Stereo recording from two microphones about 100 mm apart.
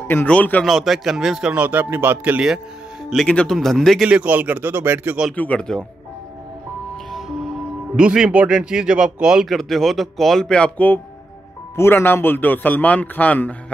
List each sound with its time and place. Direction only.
0.1 s speech: 15° left (ahead or behind)
0.7 s a man's voice: 5° right (ahead or behind); by 2.4 s 20° right (ahead or behind)
3.3 s a man's voice: 10° left (ahead or behind)
4.1 s a man's voice: 15° right (ahead or behind)
5.3 s speech: 15° left (ahead or behind)
7.9 s a man's voice: 10° right (ahead or behind); by 11.0 s 15° left (ahead or behind)
11.7 s a man's voice: 25° left (ahead or behind)